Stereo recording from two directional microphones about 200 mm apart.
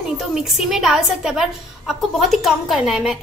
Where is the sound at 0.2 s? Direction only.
Centre (ahead or behind).